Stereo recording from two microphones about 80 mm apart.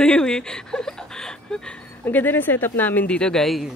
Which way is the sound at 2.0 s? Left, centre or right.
Left.